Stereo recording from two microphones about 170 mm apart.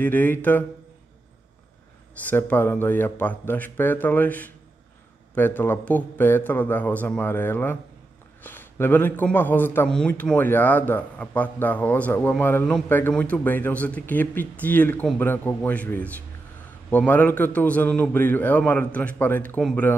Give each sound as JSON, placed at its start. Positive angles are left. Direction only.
{"t": 0.0, "sound": "a man's voice", "side_deg": 10}
{"t": 2.2, "sound": "a man's voice", "side_deg": 10}